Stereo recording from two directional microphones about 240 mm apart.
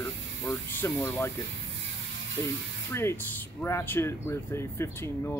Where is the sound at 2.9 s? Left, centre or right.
Centre.